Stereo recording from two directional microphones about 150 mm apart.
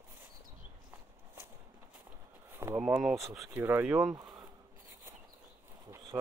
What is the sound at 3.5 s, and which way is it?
Speech, 15° right (ahead or behind).